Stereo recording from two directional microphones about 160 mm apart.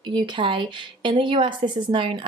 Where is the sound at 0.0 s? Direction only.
30° right (ahead or behind).